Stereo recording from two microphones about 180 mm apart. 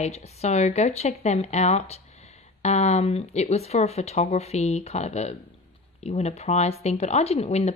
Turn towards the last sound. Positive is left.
turn(degrees=35)  # may be behind; listen again after turning